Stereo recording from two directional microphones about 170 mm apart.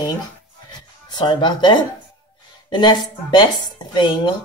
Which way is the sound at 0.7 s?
25° left (ahead or behind).